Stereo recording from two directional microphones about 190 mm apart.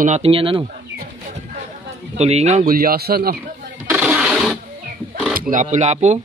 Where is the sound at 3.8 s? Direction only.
10° right (ahead or behind).